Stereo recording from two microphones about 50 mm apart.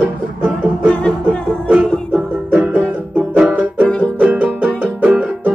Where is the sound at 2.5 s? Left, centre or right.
Right.